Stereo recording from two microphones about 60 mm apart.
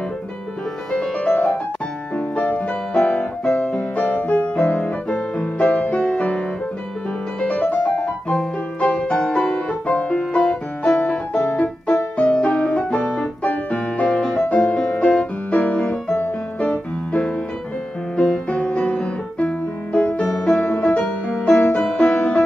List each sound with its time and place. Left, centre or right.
1.3 s music: left
2.1 s piano: left
3.7 s music: left
4.8 s music: left
12.2 s piano: centre
13.4 s music: left
18.1 s music: centre
20.2 s music: centre
20.6 s music: left